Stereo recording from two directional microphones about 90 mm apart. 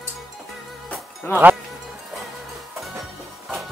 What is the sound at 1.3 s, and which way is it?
Speech, 25° left (ahead or behind).